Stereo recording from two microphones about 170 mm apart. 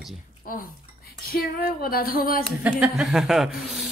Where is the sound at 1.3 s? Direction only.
65° left (ahead or behind).